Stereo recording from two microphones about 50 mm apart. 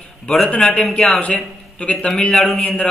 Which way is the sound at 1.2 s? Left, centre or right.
Left.